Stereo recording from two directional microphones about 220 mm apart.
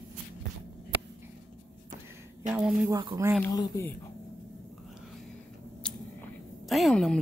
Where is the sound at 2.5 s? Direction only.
5° right (ahead or behind).